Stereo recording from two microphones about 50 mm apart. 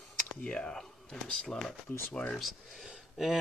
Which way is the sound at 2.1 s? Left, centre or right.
Centre.